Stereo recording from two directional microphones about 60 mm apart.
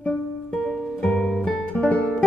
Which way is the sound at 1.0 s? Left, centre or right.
Centre.